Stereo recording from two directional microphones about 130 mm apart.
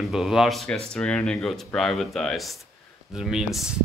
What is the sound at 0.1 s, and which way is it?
Speech, 5° right (ahead or behind).